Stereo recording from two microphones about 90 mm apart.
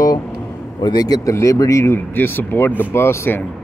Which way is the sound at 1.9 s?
25° left (ahead or behind).